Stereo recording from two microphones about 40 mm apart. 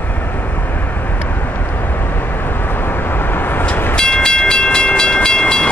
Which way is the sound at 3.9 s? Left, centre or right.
Left.